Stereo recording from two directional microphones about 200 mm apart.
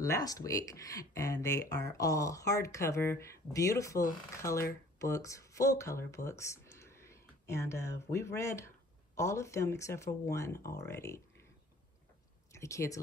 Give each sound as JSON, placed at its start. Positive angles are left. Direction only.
{"t": 0.0, "sound": "speech", "side_deg": 15}
{"t": 12.5, "sound": "speech", "side_deg": 15}